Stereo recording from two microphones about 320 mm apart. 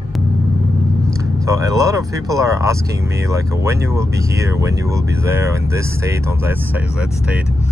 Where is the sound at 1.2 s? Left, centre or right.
Centre.